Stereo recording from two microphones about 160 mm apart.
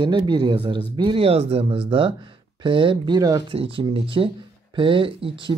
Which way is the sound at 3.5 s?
35° right (ahead or behind).